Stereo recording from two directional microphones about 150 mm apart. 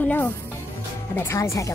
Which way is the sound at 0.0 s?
10° left (ahead or behind).